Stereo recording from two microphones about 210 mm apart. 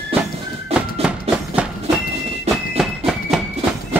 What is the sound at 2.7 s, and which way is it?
Train, centre (ahead or behind).